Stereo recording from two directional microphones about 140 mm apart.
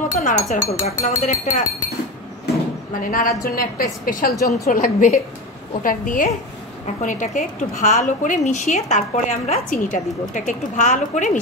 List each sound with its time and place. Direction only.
0.2 s a woman's voice: 60° left (ahead or behind)
3.0 s a woman's voice: 80° left
3.4 s a woman's voice: 90° left
4.4 s a woman's voice: 25° left (ahead or behind)
4.6 s a woman's voice: 90° left
5.8 s a woman's voice: 75° left (ahead or behind)
7.0 s a woman's voice: 65° left (ahead or behind)
9.7 s a woman's voice: 70° left (ahead or behind)